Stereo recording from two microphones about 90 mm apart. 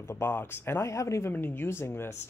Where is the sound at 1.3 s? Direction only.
25° left (ahead or behind).